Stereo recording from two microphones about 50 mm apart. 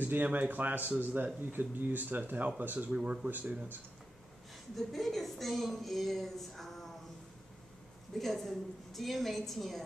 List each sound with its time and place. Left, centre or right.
0.0 s speech: right
2.9 s speech: centre
3.3 s speech: right
4.7 s a woman's voice: centre
8.2 s a woman's voice: centre